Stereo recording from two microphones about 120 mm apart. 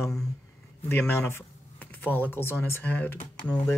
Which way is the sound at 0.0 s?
5° left (ahead or behind).